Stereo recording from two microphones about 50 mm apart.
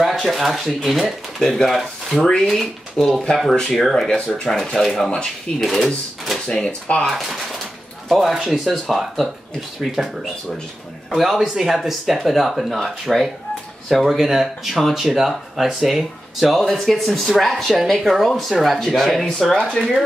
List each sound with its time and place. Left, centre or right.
0.0 s speech: centre
6.4 s speech: centre
7.1 s speech: centre
11.1 s speech: centre